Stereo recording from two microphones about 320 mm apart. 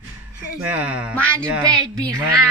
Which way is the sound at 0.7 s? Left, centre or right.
Centre.